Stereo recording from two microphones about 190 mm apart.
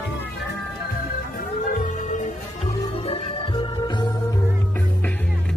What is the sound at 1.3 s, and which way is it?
Music, 40° left (ahead or behind).